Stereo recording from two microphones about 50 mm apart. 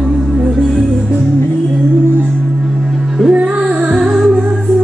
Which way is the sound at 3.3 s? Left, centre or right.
Right.